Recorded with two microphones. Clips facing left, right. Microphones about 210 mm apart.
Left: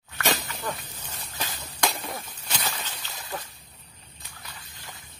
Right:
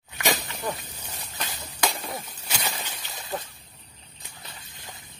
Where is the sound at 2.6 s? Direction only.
15° right (ahead or behind).